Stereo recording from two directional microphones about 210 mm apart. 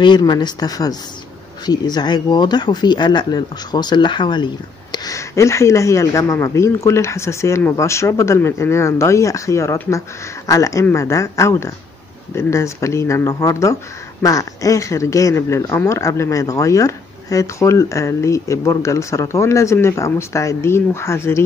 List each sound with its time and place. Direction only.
0.0 s speech: 20° left (ahead or behind)